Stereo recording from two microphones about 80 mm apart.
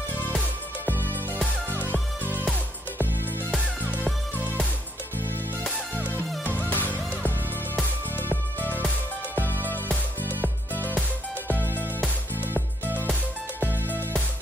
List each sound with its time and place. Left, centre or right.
5.9 s music: right
6.7 s music: left
11.4 s music: left
13.0 s music: centre